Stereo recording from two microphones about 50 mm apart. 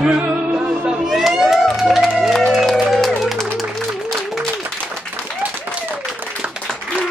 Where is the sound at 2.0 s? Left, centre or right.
Centre.